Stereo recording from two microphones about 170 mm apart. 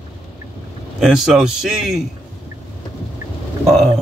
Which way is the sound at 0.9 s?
5° right (ahead or behind).